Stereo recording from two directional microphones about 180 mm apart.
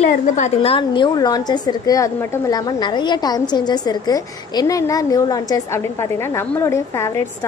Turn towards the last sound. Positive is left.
turn(degrees=15)  # may be behind; listen again after turning